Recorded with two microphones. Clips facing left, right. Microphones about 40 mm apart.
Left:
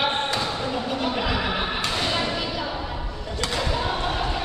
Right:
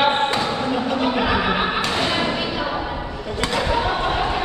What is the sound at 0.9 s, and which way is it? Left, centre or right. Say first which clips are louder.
Neigh: right 6 dB; right.